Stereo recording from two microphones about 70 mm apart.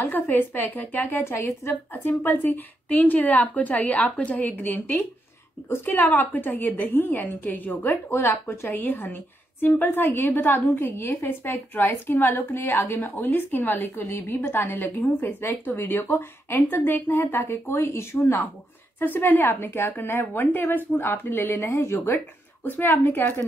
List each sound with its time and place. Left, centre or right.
0.0 s a woman's voice: left
1.2 s a woman's voice: left